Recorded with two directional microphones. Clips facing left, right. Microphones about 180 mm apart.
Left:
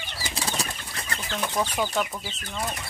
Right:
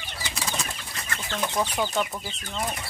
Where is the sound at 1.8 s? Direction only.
5° left (ahead or behind).